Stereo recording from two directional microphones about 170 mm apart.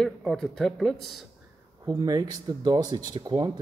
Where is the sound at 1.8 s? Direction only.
20° right (ahead or behind).